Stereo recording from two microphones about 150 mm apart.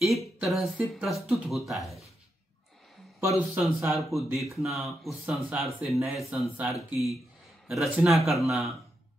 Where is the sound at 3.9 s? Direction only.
Centre (ahead or behind).